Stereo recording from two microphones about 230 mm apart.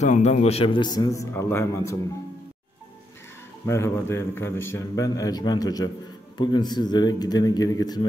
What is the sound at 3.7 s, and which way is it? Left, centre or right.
A man's voice, centre.